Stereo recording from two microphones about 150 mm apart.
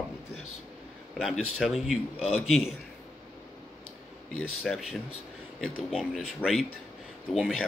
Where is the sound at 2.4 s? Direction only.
Centre (ahead or behind).